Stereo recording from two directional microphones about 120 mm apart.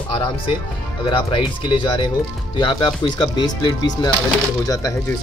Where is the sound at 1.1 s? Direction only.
45° left (ahead or behind).